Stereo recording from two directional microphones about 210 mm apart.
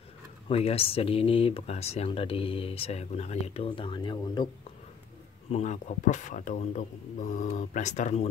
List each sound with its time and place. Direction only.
0.5 s speech: 30° left (ahead or behind)
5.5 s speech: 35° left (ahead or behind)